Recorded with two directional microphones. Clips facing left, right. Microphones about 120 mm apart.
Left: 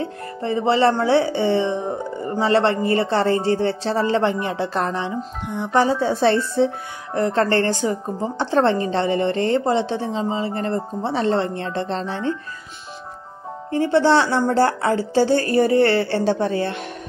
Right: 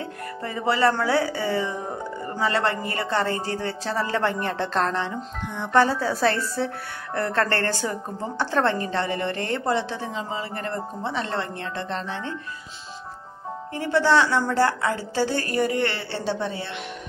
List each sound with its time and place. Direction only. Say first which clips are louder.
0.0 s speech: left 5 dB; 25° left (ahead or behind)
5.9 s speech: left 5 dB; 25° left (ahead or behind)
13.7 s speech: left 5 dB; 30° left (ahead or behind); by 16.8 s 50° left (ahead or behind)